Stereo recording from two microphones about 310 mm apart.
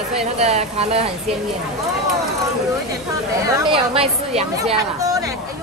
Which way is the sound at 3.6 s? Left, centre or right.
Centre.